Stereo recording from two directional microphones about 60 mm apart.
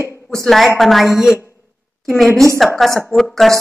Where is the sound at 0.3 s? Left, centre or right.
Centre.